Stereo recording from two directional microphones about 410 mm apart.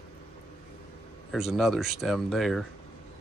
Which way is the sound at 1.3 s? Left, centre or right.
Centre.